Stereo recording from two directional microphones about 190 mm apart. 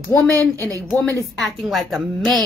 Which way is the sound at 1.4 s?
Centre (ahead or behind).